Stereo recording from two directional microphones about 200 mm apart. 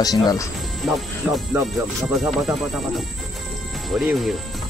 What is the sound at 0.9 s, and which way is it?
Speech, centre (ahead or behind).